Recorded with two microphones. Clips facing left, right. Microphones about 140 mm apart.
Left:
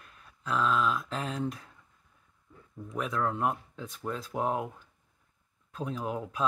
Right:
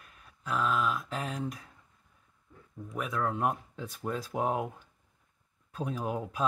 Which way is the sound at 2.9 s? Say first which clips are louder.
Left 1 dB; 10° right (ahead or behind).